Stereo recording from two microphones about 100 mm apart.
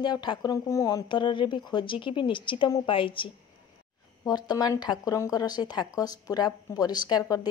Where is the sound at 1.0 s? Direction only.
55° left (ahead or behind).